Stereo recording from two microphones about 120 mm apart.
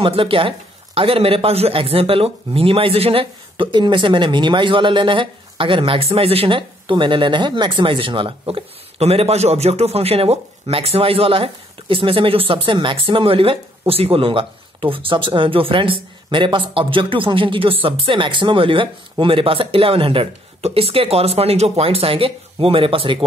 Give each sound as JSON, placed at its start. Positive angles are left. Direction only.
{"t": 0.0, "sound": "a man's voice", "side_deg": -50}